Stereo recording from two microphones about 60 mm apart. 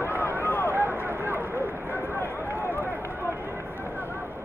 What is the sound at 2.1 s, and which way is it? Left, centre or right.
Run, left.